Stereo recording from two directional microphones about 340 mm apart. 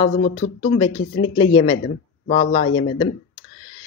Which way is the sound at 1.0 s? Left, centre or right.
Left.